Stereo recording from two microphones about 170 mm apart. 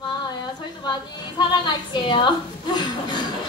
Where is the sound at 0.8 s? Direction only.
25° left (ahead or behind).